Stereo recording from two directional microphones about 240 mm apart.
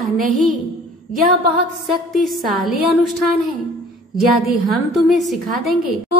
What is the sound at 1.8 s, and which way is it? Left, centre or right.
A woman's voice, centre.